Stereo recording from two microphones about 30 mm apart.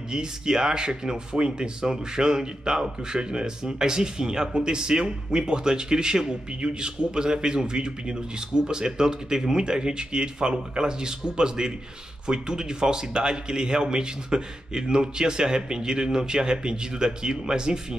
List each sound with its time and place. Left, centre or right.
0.1 s speech: right